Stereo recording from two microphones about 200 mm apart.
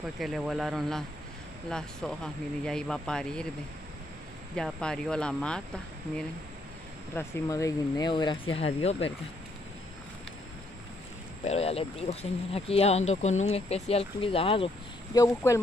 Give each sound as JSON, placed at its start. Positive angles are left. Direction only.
{"t": 0.2, "sound": "speech", "side_deg": 0}
{"t": 4.6, "sound": "speech", "side_deg": 5}
{"t": 7.2, "sound": "speech", "side_deg": 15}
{"t": 11.4, "sound": "speech", "side_deg": 30}
{"t": 15.1, "sound": "speech", "side_deg": 15}